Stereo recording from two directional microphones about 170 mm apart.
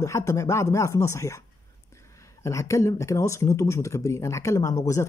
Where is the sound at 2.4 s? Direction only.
15° left (ahead or behind).